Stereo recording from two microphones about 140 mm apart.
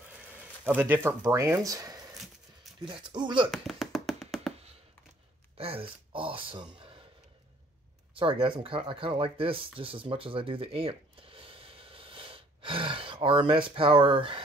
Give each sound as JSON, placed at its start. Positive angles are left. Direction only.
{"t": 0.7, "sound": "speech", "side_deg": -15}
{"t": 2.1, "sound": "dog", "side_deg": 0}
{"t": 2.9, "sound": "speech", "side_deg": -35}
{"t": 3.5, "sound": "music", "side_deg": 0}
{"t": 5.6, "sound": "speech", "side_deg": -40}
{"t": 8.1, "sound": "speech", "side_deg": -40}